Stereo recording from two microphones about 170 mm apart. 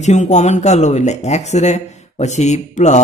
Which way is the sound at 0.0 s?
45° left (ahead or behind).